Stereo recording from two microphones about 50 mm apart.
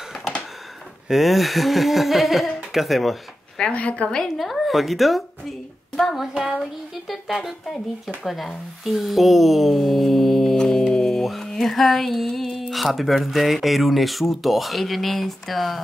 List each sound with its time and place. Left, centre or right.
1.0 s speech: centre
3.7 s a woman's voice: left
4.4 s speech: centre